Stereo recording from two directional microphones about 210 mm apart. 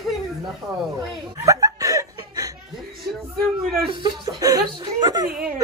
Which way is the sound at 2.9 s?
Centre (ahead or behind).